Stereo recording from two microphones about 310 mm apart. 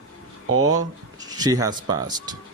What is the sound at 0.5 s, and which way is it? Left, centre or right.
Speech, right.